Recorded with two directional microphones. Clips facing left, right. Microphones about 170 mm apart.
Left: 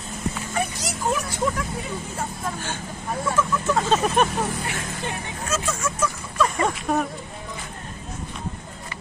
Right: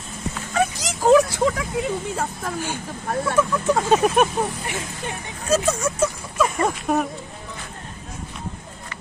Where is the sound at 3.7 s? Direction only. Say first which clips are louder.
Right 3 dB; 10° right (ahead or behind).